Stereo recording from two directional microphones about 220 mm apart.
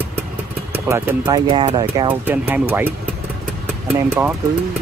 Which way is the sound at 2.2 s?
10° right (ahead or behind).